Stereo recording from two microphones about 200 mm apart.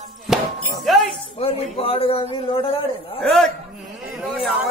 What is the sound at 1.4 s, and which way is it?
A man's voice, 30° left (ahead or behind).